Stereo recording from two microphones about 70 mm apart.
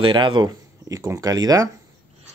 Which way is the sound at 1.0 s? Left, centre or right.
Right.